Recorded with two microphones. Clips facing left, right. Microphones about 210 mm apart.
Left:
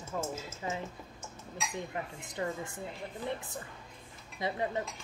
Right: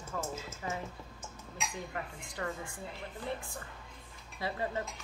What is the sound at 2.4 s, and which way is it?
Speech, 20° left (ahead or behind).